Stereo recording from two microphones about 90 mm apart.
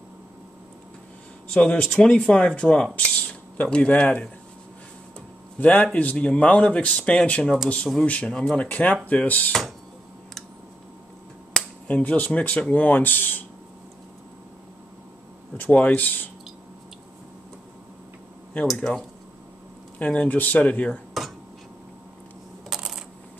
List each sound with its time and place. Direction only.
1.5 s speech: 10° left (ahead or behind)
5.6 s speech: 15° left (ahead or behind)
11.5 s speech: 15° left (ahead or behind)
15.5 s speech: 20° left (ahead or behind)
18.8 s speech: 5° left (ahead or behind)
22.7 s a sound: 5° right (ahead or behind)